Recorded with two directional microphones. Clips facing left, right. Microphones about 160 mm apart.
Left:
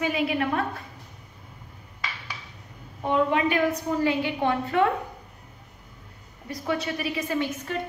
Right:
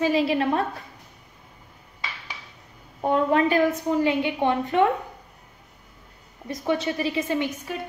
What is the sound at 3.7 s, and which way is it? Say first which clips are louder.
A woman's voice: right 2 dB; 20° right (ahead or behind).